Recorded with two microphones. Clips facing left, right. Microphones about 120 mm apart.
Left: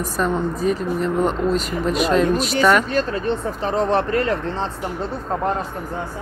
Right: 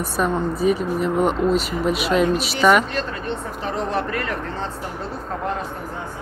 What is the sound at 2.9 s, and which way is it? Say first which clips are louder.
Speech: left 5 dB; 40° left (ahead or behind).